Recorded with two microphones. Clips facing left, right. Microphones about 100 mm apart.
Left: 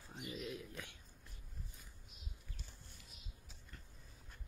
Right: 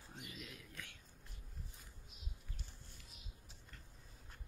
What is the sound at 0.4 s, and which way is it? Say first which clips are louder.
Whispering: left 7 dB; 20° left (ahead or behind).